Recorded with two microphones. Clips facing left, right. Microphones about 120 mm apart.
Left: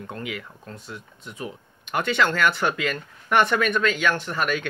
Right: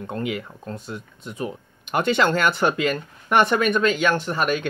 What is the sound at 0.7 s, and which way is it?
Speech, 20° right (ahead or behind).